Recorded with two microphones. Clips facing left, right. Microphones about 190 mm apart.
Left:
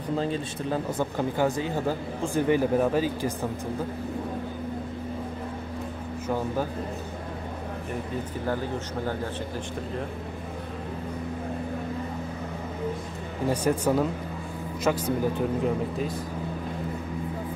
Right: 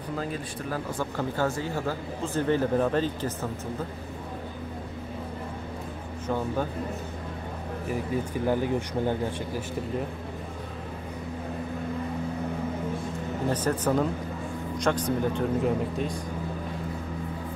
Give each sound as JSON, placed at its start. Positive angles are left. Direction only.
{"t": 0.1, "sound": "speech", "side_deg": 25}
{"t": 8.5, "sound": "speech", "side_deg": -15}
{"t": 13.5, "sound": "a man's voice", "side_deg": 10}